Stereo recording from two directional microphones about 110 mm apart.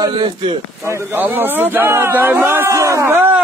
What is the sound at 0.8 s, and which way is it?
A man's voice, 25° right (ahead or behind).